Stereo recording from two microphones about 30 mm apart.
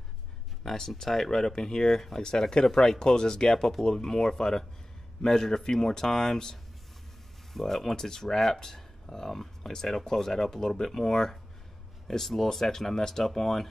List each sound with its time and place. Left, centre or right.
0.7 s speech: left
1.0 s speech: centre
1.6 s speech: left
1.9 s speech: centre
3.5 s speech: centre